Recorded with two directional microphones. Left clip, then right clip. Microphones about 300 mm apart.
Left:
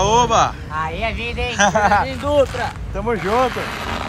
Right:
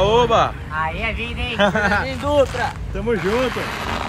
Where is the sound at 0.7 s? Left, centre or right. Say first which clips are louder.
Even; centre.